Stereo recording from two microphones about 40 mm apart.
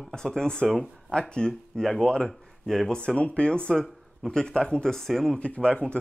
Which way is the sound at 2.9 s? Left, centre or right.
Left.